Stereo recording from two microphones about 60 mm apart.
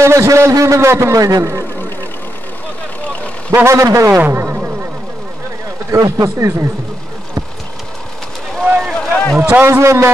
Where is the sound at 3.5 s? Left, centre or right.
Right.